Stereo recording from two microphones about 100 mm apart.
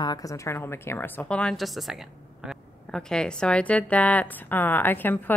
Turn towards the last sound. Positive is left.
turn(degrees=20)  # may be behind; listen again after turning